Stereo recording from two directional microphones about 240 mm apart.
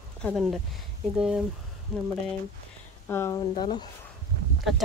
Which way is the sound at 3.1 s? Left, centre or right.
Centre.